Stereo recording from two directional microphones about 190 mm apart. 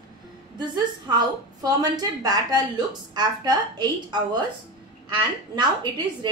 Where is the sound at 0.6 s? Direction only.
20° right (ahead or behind).